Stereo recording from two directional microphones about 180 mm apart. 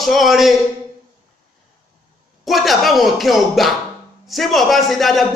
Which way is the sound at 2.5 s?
Centre (ahead or behind).